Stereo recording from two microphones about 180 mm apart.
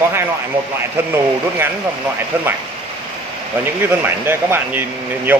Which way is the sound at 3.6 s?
10° right (ahead or behind).